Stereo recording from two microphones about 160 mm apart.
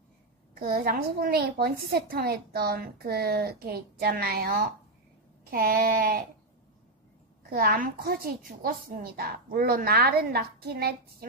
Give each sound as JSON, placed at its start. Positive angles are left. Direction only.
{"t": 0.6, "sound": "a woman's voice", "side_deg": -70}
{"t": 7.4, "sound": "a woman's voice", "side_deg": -70}